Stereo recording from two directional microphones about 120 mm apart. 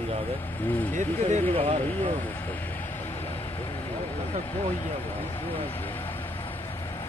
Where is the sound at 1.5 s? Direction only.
55° right (ahead or behind).